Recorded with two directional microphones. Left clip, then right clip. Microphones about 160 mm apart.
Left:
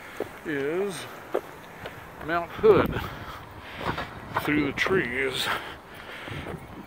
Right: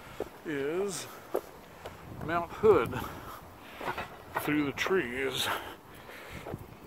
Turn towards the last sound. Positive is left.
turn(degrees=-15)  # may be behind; listen again after turning